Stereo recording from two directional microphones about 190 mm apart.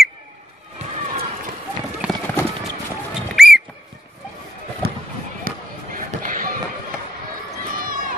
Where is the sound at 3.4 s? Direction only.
5° right (ahead or behind).